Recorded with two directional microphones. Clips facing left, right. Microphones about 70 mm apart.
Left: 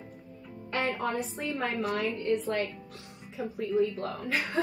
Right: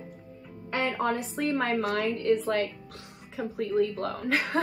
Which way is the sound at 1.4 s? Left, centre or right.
Right.